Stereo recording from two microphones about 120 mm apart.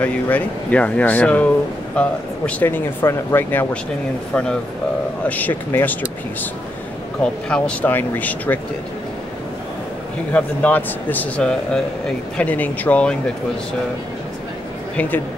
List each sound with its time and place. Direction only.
0.0 s speech: 10° left (ahead or behind)
5.2 s speech: 15° left (ahead or behind)
7.4 s speech: 10° left (ahead or behind)
10.3 s speech: 15° left (ahead or behind)
15.0 s speech: 15° left (ahead or behind)